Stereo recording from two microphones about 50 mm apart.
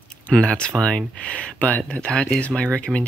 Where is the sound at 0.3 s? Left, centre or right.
Left.